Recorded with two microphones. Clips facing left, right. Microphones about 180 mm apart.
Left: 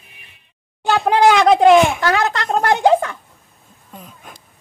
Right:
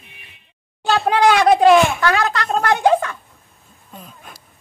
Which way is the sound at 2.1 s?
25° left (ahead or behind).